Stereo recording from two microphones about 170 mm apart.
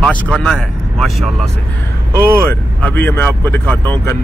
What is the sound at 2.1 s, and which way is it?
Speech, 15° right (ahead or behind).